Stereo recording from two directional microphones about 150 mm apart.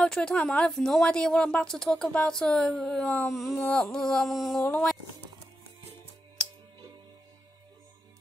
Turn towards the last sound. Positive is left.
turn(degrees=-30)  # may be behind; listen again after turning